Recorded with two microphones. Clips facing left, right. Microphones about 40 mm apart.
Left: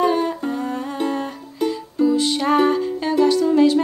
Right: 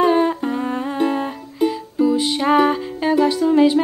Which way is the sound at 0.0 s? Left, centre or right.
Right.